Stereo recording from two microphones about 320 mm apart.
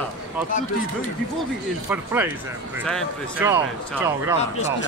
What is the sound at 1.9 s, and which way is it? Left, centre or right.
Speech, centre.